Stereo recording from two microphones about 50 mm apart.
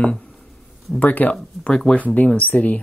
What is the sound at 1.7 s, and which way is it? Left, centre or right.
Speech, centre.